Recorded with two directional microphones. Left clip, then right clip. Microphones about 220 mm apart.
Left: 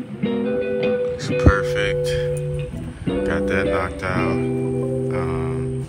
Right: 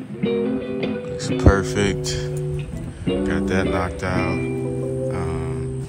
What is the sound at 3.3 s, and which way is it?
Speech, 15° right (ahead or behind).